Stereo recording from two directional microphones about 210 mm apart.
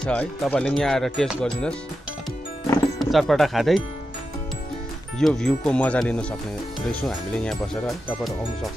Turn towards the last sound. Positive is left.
turn(degrees=5)  # may be behind; listen again after turning